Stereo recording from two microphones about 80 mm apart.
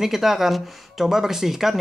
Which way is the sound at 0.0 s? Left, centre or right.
Centre.